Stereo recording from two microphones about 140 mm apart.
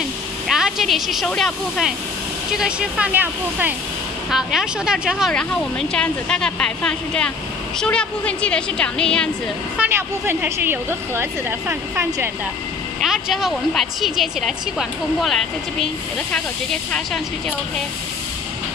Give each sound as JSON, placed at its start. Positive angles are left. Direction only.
{"t": 0.5, "sound": "a woman's voice", "side_deg": -5}
{"t": 5.3, "sound": "speech", "side_deg": 5}
{"t": 9.8, "sound": "a woman's voice", "side_deg": -15}
{"t": 13.0, "sound": "a woman's voice", "side_deg": 0}